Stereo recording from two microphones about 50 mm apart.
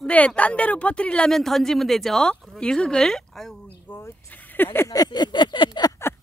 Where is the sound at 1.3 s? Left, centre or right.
Centre.